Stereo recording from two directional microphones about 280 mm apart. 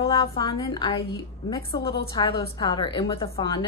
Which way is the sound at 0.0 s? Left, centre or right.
Centre.